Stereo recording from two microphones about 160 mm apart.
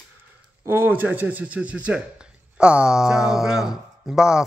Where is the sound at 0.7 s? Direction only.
15° right (ahead or behind).